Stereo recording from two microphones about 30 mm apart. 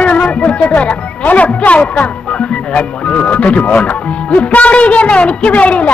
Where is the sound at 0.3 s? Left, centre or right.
Left.